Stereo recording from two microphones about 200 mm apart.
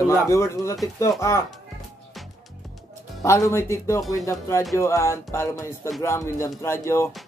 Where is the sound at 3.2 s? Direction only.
15° left (ahead or behind).